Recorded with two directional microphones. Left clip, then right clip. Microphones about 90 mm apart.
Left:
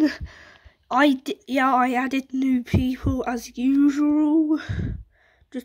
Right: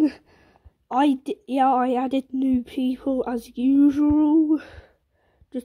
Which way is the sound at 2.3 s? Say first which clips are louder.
Left 1 dB; 35° right (ahead or behind).